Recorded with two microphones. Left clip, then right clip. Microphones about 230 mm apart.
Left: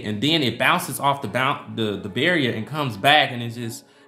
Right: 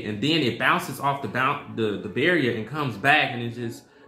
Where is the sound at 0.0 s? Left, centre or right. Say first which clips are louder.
Left 2 dB; left.